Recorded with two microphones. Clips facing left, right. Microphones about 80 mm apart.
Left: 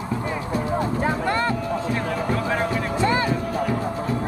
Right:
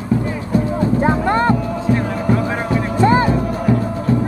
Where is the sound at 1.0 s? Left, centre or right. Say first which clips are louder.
Right 9 dB; right.